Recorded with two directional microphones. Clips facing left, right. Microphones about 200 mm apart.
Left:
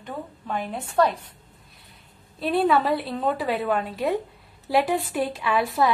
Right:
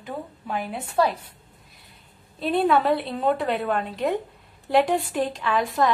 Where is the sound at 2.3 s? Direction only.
Centre (ahead or behind).